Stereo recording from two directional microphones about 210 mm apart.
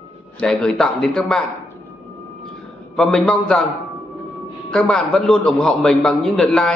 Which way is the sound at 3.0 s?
5° left (ahead or behind).